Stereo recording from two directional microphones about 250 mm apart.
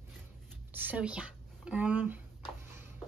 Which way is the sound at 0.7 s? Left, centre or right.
Centre.